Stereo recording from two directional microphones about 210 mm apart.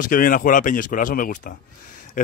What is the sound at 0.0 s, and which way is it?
A man's voice, 40° left (ahead or behind).